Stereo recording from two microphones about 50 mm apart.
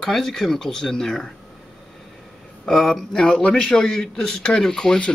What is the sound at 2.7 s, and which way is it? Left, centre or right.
Speech, centre.